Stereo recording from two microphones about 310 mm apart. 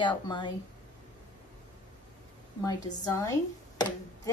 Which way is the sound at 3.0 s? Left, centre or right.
Centre.